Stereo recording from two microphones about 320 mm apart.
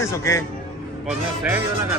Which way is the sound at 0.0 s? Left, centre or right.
Centre.